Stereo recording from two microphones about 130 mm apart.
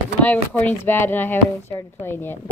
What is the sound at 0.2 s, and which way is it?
A woman's voice, 15° left (ahead or behind).